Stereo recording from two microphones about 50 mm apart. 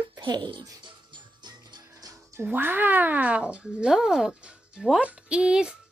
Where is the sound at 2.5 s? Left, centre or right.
Right; by 4.3 s centre.